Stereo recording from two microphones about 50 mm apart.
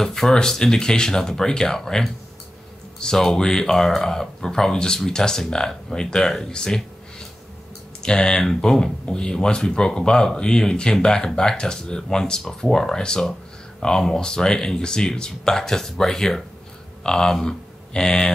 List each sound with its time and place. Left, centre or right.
0.0 s speech: centre
8.5 s speech: centre